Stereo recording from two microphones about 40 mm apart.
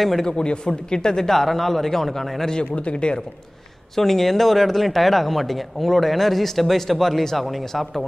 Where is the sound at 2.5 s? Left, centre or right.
Left.